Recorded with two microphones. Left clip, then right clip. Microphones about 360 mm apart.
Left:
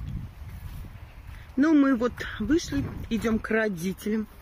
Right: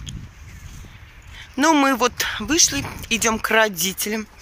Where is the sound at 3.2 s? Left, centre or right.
Centre.